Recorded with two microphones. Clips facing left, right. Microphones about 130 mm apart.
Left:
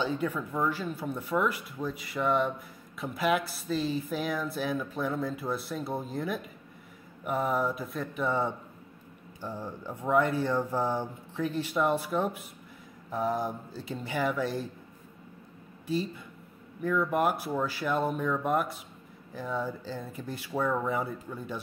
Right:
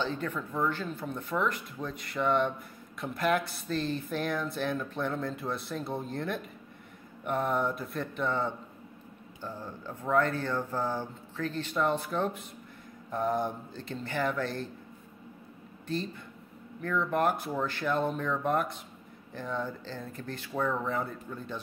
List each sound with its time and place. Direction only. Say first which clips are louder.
0.0 s speech: left 3 dB; 10° left (ahead or behind)
8.3 s speech: left 2 dB; 10° left (ahead or behind)
16.8 s speech: left 1 dB; 5° left (ahead or behind)